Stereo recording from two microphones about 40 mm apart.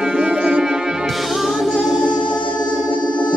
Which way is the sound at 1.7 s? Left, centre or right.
Centre.